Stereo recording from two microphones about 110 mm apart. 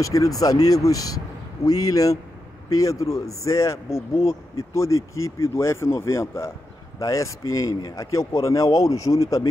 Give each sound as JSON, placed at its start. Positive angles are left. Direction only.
{"t": 0.0, "sound": "speech", "side_deg": 30}
{"t": 3.9, "sound": "speech", "side_deg": 65}
{"t": 4.3, "sound": "speech", "side_deg": 30}